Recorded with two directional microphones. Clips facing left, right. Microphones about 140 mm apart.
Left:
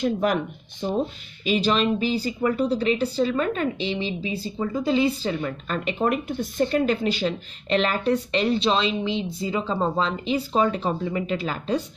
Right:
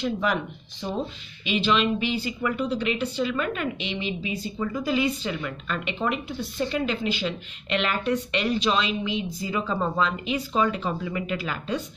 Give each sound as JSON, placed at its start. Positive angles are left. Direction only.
{"t": 0.0, "sound": "speech", "side_deg": 50}
{"t": 1.4, "sound": "speech", "side_deg": 40}